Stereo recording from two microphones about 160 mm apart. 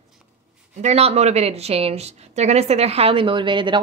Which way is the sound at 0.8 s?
40° right (ahead or behind).